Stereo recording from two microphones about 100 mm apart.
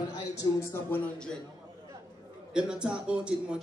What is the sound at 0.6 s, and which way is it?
Speech, 25° left (ahead or behind).